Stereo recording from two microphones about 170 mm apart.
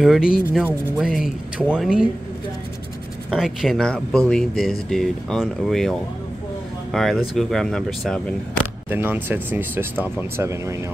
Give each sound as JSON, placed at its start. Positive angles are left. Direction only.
{"t": 0.0, "sound": "speech", "side_deg": -5}
{"t": 3.3, "sound": "speech", "side_deg": 0}
{"t": 8.9, "sound": "speech", "side_deg": -10}